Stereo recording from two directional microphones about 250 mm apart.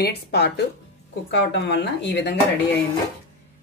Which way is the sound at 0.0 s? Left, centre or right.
Left.